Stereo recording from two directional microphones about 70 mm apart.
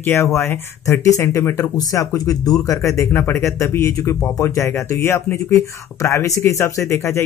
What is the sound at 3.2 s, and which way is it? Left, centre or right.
Speech, left.